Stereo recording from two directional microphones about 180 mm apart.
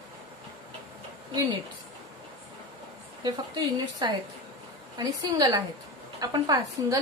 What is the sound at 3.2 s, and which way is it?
Speech, 25° right (ahead or behind).